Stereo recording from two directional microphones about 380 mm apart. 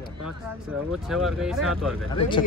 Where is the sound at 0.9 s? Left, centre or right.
Centre.